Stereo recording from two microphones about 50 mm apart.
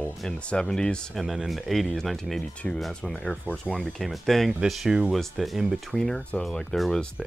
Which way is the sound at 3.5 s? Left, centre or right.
Left.